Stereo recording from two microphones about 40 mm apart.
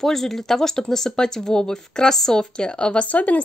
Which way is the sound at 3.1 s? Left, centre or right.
Left.